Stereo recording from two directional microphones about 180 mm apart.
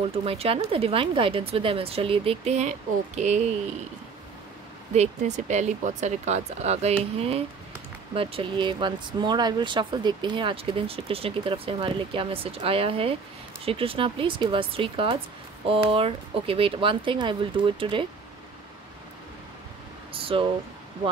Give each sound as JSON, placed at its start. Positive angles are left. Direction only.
{"t": 0.1, "sound": "speech", "side_deg": -35}
{"t": 4.9, "sound": "speech", "side_deg": -40}
{"t": 20.1, "sound": "speech", "side_deg": -30}